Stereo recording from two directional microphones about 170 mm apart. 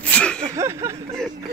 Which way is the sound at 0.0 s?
5° left (ahead or behind).